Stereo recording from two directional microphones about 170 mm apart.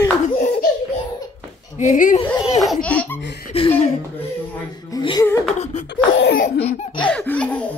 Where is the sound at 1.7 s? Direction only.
50° left (ahead or behind).